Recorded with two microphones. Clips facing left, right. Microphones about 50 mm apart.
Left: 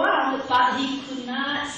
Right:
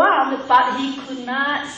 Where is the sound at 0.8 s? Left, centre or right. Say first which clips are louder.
Right 3 dB; right.